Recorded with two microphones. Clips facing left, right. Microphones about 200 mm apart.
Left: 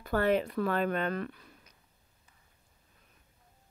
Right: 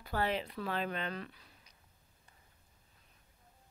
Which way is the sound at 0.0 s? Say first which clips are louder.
Left 8 dB; 50° left (ahead or behind).